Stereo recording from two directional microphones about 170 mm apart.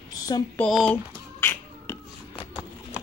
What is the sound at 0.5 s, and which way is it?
Speech, 5° left (ahead or behind).